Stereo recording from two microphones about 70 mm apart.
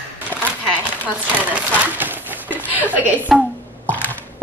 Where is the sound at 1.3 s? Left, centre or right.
Right.